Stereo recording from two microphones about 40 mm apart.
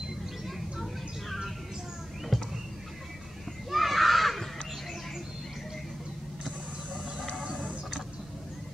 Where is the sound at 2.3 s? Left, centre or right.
Centre.